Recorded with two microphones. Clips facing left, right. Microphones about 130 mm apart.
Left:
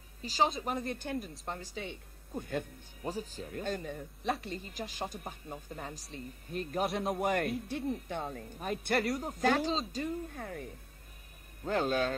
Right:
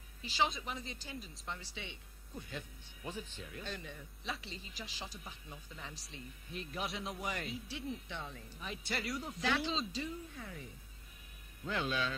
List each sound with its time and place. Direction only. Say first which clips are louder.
0.2 s speech: left 5 dB; 40° left (ahead or behind); by 1.3 s 55° left (ahead or behind)
1.4 s speech: left 6 dB; 45° left (ahead or behind)